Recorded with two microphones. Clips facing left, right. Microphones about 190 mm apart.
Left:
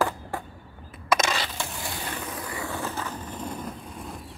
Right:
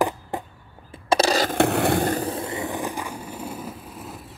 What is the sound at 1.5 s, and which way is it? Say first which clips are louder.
Vehicle: right 16 dB; 65° right (ahead or behind).